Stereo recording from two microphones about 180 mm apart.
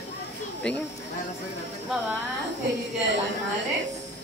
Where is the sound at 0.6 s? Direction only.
5° left (ahead or behind).